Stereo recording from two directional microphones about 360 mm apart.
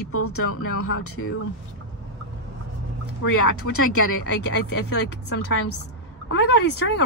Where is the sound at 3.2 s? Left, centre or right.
Left.